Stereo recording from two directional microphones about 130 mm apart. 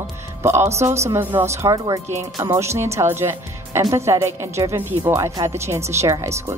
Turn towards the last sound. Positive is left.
turn(degrees=-25)  # may be behind; listen again after turning